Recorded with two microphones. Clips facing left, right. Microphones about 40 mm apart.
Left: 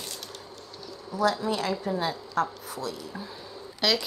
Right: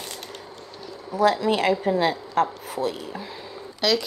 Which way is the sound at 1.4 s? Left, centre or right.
Right.